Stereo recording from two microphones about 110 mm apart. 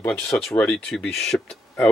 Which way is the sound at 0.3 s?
5° left (ahead or behind).